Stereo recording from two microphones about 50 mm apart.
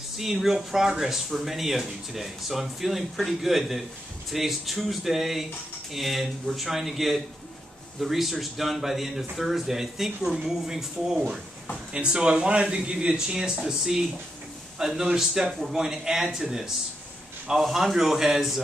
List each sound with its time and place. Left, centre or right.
0.2 s speech: centre